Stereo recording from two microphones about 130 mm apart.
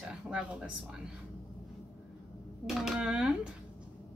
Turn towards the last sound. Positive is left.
turn(degrees=-5)  # may be behind; listen again after turning